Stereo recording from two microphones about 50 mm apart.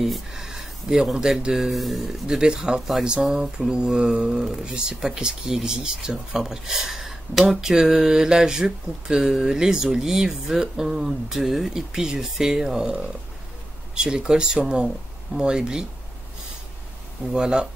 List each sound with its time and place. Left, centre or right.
0.0 s speech: centre
2.2 s speech: centre
17.3 s speech: centre